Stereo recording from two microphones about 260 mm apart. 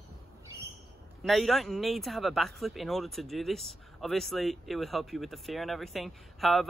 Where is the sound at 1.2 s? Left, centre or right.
Centre.